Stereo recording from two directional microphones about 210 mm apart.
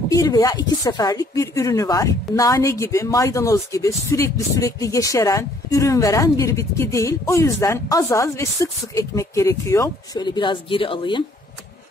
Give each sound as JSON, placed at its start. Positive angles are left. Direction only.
{"t": 0.1, "sound": "speech", "side_deg": 15}